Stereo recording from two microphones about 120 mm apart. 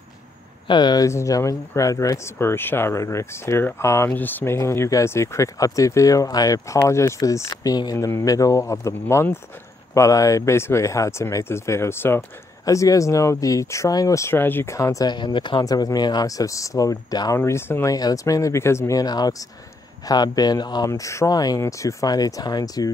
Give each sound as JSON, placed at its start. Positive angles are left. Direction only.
{"t": 0.7, "sound": "speech", "side_deg": 35}
{"t": 15.1, "sound": "speech", "side_deg": 40}
{"t": 17.4, "sound": "speech", "side_deg": 20}
{"t": 17.9, "sound": "speech", "side_deg": 30}